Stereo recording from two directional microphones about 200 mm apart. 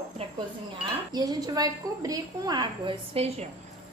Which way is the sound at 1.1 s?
20° right (ahead or behind).